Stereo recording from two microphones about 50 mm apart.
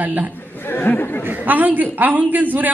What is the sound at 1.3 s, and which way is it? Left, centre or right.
A woman's voice, right.